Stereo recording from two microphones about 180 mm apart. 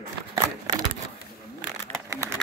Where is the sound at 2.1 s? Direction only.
15° right (ahead or behind).